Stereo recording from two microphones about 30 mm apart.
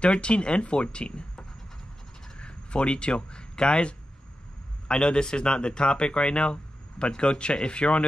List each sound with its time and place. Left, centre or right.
0.0 s speech: left
2.3 s a sound: left
4.8 s speech: left